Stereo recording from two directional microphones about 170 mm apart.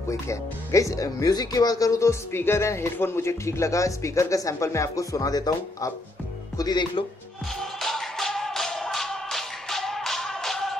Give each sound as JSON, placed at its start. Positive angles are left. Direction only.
{"t": 0.1, "sound": "speech", "side_deg": 15}
{"t": 7.8, "sound": "music", "side_deg": 0}